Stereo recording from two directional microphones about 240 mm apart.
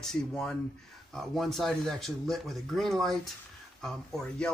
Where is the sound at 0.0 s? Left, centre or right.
Centre.